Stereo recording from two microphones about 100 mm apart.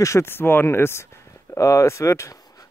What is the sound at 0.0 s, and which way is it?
Speech, 25° left (ahead or behind).